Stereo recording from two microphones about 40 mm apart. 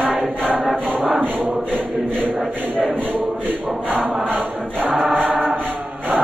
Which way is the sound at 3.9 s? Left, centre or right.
Right.